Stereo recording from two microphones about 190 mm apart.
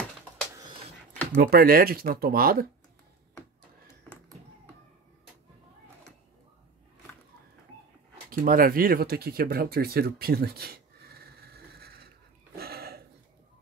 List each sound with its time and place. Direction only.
1.4 s speech: 50° right (ahead or behind)
8.3 s speech: 50° right (ahead or behind)
12.5 s a sound: 55° right (ahead or behind)